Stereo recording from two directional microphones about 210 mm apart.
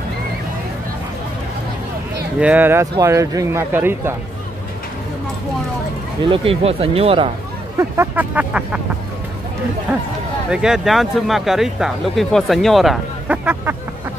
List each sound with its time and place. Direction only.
2.4 s speech: 10° right (ahead or behind)
6.2 s speech: 25° right (ahead or behind)
7.7 s speech: 10° right (ahead or behind)
10.5 s speech: 5° right (ahead or behind)